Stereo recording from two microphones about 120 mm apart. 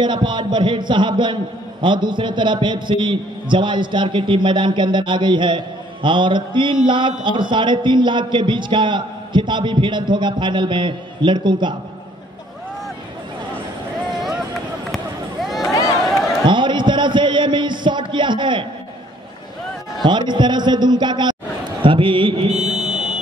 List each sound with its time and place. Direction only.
0.0 s a man's voice: 40° right (ahead or behind)
6.0 s mantra: 40° right (ahead or behind)
6.9 s a man's voice: 40° right (ahead or behind)
15.4 s a sound: centre (ahead or behind)
16.4 s a sound: 40° right (ahead or behind)
20.0 s a man's voice: 40° right (ahead or behind)
21.8 s mantra: 45° right (ahead or behind)
22.6 s buzzer: 5° right (ahead or behind)